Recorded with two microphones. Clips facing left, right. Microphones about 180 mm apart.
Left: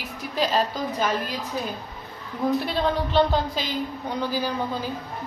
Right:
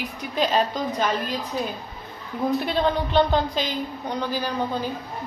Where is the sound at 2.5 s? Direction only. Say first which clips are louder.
Right 3 dB; centre (ahead or behind).